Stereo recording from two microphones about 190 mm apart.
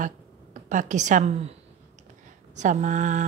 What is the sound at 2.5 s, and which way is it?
Speech, 40° right (ahead or behind).